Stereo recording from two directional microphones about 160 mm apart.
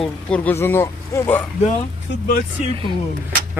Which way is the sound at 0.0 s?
10° left (ahead or behind).